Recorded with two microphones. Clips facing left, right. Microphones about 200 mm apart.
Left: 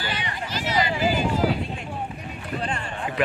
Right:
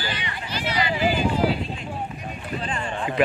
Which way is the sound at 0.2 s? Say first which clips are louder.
Even; 45° left (ahead or behind).